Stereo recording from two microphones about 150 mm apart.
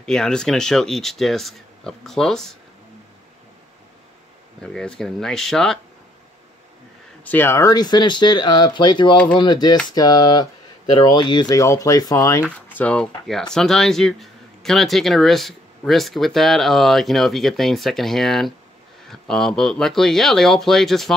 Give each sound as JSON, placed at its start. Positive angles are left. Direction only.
{"t": 0.0, "sound": "speech", "side_deg": 5}
{"t": 4.7, "sound": "speech", "side_deg": 5}
{"t": 7.2, "sound": "speech", "side_deg": 15}
{"t": 12.4, "sound": "speech", "side_deg": 10}